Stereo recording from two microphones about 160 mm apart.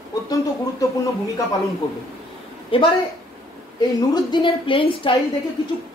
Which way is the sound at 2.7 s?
35° left (ahead or behind).